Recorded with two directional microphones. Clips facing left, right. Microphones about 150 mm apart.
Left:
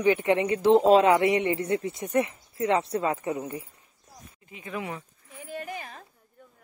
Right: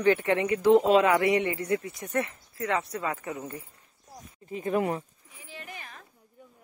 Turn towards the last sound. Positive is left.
turn(degrees=35)  # may be behind; listen again after turning